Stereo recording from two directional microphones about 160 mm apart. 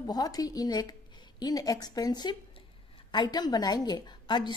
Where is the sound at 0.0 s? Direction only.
25° left (ahead or behind).